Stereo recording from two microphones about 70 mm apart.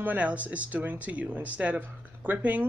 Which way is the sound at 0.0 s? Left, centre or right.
Right.